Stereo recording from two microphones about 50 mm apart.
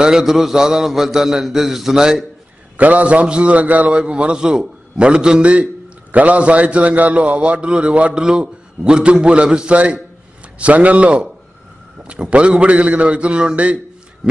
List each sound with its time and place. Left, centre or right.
0.0 s a man's voice: centre
2.8 s a man's voice: right
4.0 s a man's voice: right
6.1 s a man's voice: right